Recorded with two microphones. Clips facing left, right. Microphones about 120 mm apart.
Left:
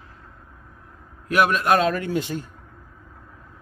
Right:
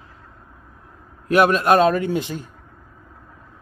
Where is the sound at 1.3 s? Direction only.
35° right (ahead or behind).